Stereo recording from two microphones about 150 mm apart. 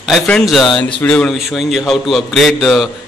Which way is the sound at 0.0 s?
Centre (ahead or behind).